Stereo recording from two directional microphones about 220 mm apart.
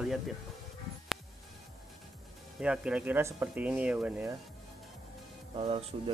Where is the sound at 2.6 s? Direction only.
5° right (ahead or behind).